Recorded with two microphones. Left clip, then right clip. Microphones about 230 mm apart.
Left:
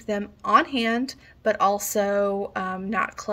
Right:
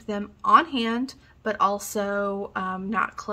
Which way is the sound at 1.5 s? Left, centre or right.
Right.